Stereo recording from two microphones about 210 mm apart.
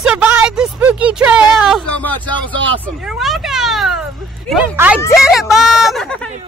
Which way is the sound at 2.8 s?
Centre (ahead or behind).